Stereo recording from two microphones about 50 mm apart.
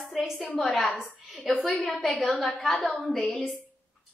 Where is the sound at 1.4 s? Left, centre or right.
Centre.